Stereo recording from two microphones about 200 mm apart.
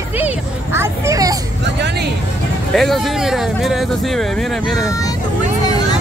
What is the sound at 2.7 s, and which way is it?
Speech, centre (ahead or behind).